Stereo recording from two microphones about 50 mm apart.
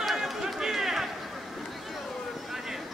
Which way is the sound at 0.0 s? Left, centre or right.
Centre.